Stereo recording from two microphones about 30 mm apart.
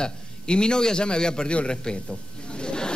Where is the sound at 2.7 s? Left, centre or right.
Left.